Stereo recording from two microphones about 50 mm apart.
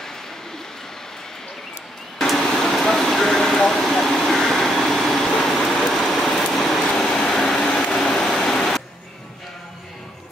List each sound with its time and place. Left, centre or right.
2.1 s air conditioning: centre
7.3 s vehicle: centre